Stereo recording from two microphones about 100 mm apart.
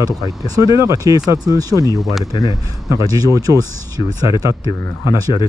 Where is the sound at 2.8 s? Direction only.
35° right (ahead or behind).